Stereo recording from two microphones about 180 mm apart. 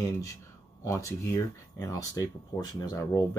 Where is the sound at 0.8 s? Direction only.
15° left (ahead or behind).